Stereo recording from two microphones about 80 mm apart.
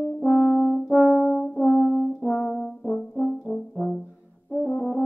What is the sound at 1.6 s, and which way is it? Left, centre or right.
French horn, centre.